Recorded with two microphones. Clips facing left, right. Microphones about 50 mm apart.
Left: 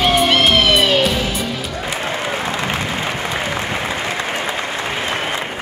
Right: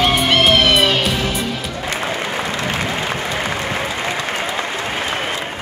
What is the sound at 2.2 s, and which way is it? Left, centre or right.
Applause, centre.